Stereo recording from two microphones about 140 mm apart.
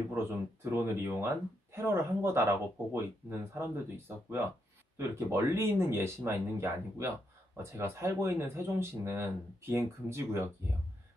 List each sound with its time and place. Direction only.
0.1 s speech: 15° right (ahead or behind)